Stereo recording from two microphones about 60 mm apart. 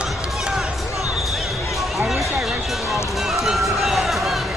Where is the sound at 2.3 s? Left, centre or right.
Centre.